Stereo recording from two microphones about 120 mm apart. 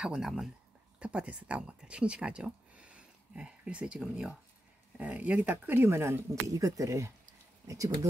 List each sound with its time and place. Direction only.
0.0 s speech: 5° right (ahead or behind); by 8.1 s 30° right (ahead or behind)